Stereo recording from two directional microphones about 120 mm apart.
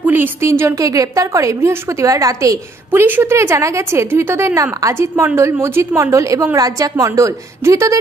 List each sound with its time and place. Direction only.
0.0 s a woman's voice: 15° right (ahead or behind)